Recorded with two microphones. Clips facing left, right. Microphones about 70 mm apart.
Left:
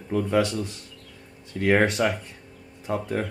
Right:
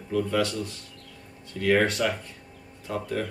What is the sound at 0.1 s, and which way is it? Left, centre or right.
Speech, left.